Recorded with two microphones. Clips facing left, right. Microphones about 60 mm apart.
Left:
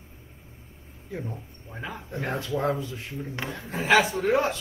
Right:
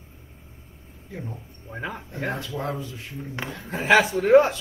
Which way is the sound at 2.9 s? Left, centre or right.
Left.